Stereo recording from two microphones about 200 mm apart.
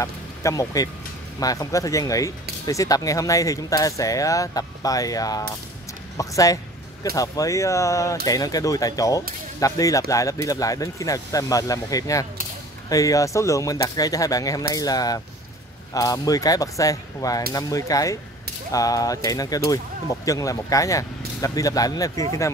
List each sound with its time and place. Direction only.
0.0 s speech: 15° left (ahead or behind)
6.1 s a sound: 15° left (ahead or behind)
7.2 s speech: 15° left (ahead or behind)